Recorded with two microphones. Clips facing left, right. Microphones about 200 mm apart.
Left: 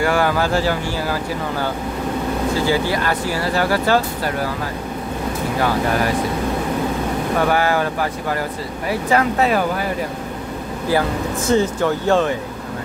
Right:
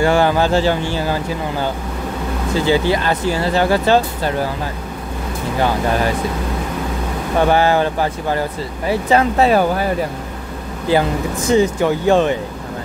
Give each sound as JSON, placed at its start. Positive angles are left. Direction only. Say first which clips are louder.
{"t": 0.0, "sound": "speech", "louder": "right 3 dB", "side_deg": -25}
{"t": 7.4, "sound": "speech", "louder": "right 5 dB", "side_deg": -25}
{"t": 10.9, "sound": "speech", "louder": "right 3 dB", "side_deg": -15}